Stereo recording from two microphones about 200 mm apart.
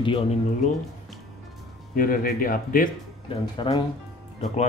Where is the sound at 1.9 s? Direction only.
45° left (ahead or behind).